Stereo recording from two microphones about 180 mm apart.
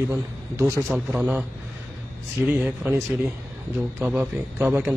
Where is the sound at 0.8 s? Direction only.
Centre (ahead or behind).